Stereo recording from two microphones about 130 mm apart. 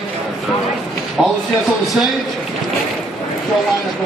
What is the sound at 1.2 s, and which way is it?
Speech, centre (ahead or behind).